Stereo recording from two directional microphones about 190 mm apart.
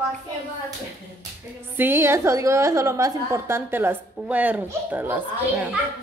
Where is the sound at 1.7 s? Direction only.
10° right (ahead or behind).